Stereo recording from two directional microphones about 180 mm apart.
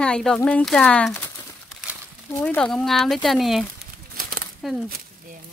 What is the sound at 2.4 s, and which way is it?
Speech, 5° left (ahead or behind).